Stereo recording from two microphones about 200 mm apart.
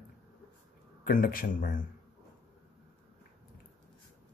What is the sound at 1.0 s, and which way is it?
Speech, 45° left (ahead or behind).